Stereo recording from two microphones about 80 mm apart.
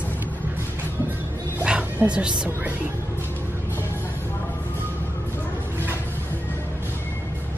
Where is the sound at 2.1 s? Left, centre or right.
Centre.